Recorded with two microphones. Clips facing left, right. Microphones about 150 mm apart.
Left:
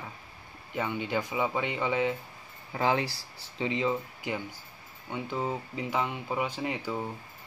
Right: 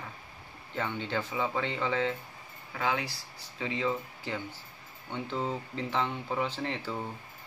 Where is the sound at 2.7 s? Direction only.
30° left (ahead or behind).